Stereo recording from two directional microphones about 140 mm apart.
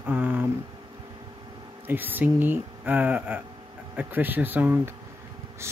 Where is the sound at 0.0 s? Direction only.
15° right (ahead or behind).